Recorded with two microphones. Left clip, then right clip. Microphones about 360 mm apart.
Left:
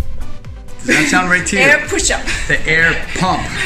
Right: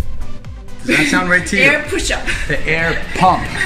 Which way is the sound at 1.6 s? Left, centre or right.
Centre.